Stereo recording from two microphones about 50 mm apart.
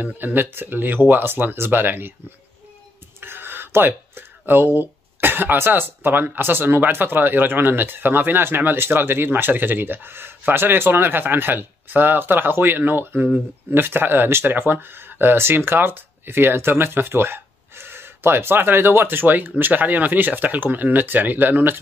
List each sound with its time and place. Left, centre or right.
0.0 s speech: right
3.2 s speech: right